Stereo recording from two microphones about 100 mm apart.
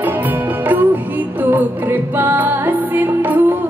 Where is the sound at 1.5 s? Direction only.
20° right (ahead or behind).